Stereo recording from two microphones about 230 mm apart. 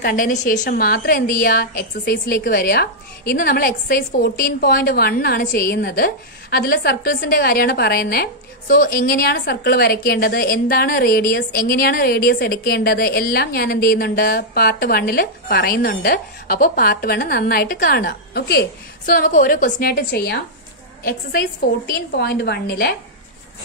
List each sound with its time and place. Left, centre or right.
0.0 s a woman's voice: left